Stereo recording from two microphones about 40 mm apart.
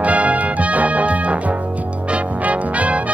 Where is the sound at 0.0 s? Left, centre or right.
Right.